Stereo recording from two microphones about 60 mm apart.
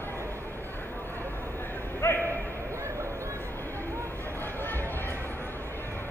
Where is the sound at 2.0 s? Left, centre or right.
Left.